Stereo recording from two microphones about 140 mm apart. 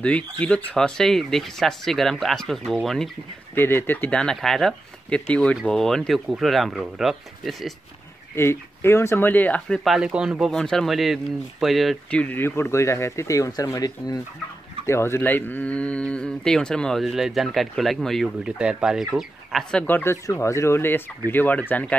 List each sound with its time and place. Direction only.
0.0 s speech: 10° left (ahead or behind)
3.5 s speech: 15° left (ahead or behind); by 7.7 s centre (ahead or behind)
8.4 s speech: 20° left (ahead or behind)
9.8 s speech: 5° right (ahead or behind)